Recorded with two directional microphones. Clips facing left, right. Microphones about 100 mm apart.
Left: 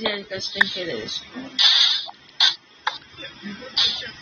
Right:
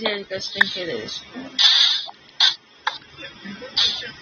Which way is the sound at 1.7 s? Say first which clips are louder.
Right 1 dB; 90° right.